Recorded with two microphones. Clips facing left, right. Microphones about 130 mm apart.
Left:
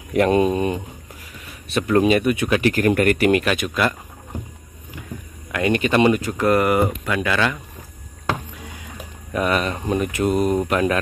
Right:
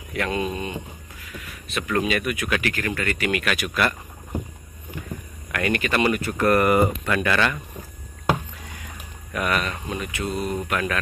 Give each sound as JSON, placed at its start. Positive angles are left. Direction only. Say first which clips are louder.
{"t": 0.1, "sound": "speech", "louder": "left 9 dB", "side_deg": 40}
{"t": 2.9, "sound": "speech", "louder": "left 10 dB", "side_deg": 50}
{"t": 3.3, "sound": "speech", "louder": "left 7 dB", "side_deg": 35}
{"t": 3.5, "sound": "speech", "louder": "left 3 dB", "side_deg": 20}
{"t": 5.5, "sound": "speech", "louder": "left 5 dB", "side_deg": 25}
{"t": 9.3, "sound": "speech", "louder": "left 4 dB", "side_deg": 25}
{"t": 10.6, "sound": "speech", "louder": "left 6 dB", "side_deg": 30}